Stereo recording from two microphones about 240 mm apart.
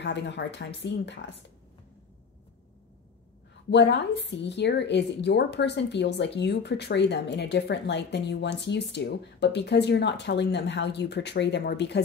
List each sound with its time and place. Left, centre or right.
0.0 s a woman's voice: left
3.7 s a woman's voice: left